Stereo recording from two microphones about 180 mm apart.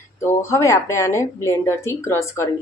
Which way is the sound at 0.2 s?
15° left (ahead or behind).